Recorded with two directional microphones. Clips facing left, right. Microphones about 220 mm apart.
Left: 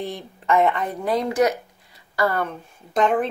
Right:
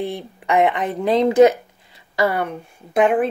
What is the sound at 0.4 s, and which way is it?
A woman's voice, 15° right (ahead or behind).